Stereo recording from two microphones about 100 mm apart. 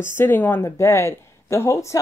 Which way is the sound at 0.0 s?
25° left (ahead or behind).